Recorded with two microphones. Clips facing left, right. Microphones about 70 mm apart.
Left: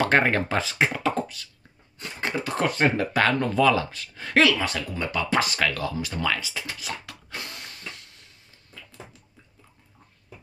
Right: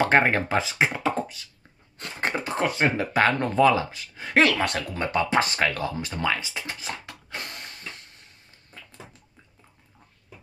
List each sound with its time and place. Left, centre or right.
0.0 s speech: right
2.1 s speech: right
2.5 s speech: centre
4.5 s speech: right
5.3 s speech: right